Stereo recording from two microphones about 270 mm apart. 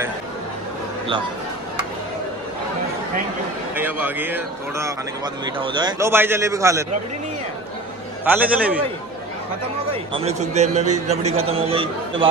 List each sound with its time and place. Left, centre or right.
3.7 s speech: centre
8.3 s a man's voice: centre
9.8 s a man's voice: right